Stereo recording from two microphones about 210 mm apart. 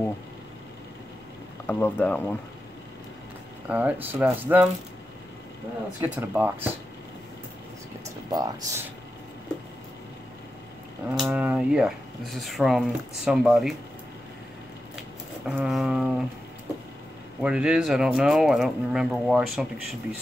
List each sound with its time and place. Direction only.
1.7 s speech: 5° left (ahead or behind)
3.6 s speech: 5° right (ahead or behind)
5.9 s speech: 10° right (ahead or behind)
8.3 s speech: 20° right (ahead or behind)
11.2 s speech: 10° right (ahead or behind)
15.4 s speech: 5° right (ahead or behind)
17.4 s speech: 5° right (ahead or behind)